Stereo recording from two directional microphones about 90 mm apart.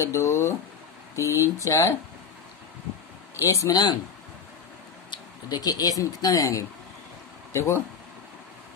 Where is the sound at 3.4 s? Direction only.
35° left (ahead or behind).